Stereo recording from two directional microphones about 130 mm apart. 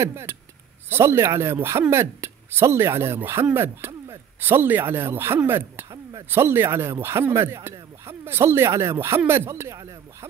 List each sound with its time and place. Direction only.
0.0 s speech: 20° right (ahead or behind)